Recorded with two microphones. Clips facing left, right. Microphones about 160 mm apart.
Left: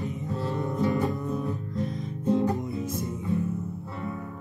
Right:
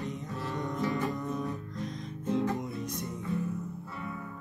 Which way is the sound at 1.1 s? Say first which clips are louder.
Left 4 dB; 5° left (ahead or behind).